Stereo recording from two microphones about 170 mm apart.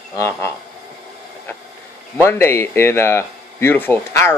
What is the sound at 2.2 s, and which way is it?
Speech, 15° left (ahead or behind).